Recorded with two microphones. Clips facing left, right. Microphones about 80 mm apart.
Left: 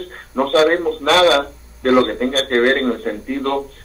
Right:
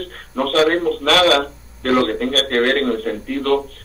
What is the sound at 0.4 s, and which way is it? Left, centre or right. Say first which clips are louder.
Speech: left 2 dB; centre.